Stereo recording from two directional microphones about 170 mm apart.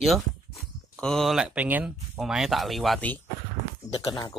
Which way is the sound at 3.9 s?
25° left (ahead or behind).